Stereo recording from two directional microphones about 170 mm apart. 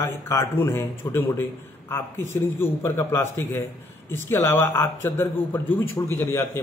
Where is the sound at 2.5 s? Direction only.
15° left (ahead or behind).